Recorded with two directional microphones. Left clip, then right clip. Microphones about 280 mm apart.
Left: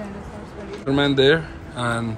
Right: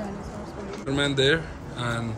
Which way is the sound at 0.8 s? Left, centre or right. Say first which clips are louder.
Left 6 dB; centre.